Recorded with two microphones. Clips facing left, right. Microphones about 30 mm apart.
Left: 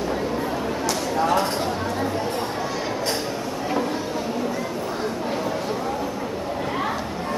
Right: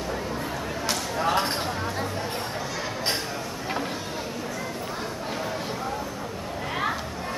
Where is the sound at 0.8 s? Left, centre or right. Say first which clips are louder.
Left 3 dB; right.